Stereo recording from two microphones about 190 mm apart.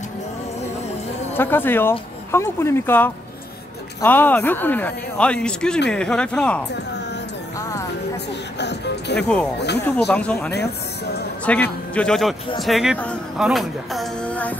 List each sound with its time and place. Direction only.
1.3 s speech: 10° left (ahead or behind)
8.5 s speech: 65° left (ahead or behind)
9.9 s a man's voice: 5° left (ahead or behind)